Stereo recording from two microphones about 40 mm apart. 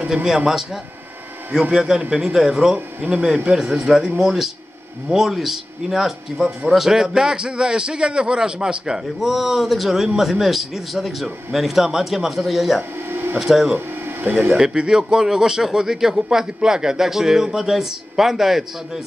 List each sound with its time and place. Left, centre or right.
0.1 s speech: centre
1.5 s a man's voice: centre
9.2 s a man's voice: centre
13.1 s a sound: right
13.4 s a man's voice: centre
13.7 s a sound: right
14.5 s speech: centre